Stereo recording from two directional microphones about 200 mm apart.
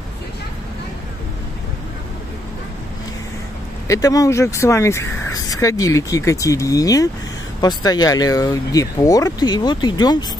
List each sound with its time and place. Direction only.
3.8 s speech: 15° left (ahead or behind)